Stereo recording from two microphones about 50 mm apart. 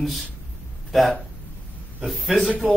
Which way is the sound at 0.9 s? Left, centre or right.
Centre.